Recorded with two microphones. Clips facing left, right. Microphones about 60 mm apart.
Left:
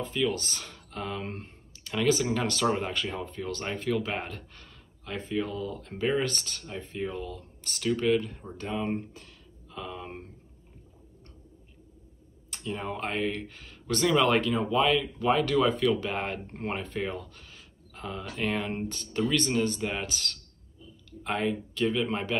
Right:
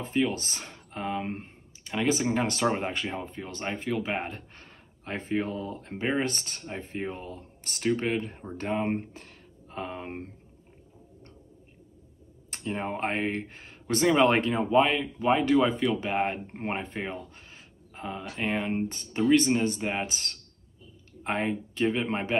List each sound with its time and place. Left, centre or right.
0.0 s speech: right
12.4 s speech: right